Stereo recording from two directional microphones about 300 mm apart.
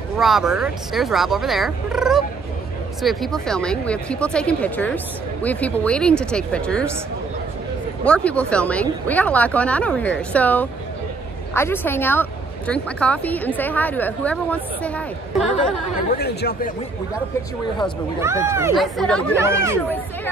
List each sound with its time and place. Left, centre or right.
0.2 s speech: centre
8.0 s speech: centre
16.1 s speech: left
18.2 s speech: centre
19.3 s speech: centre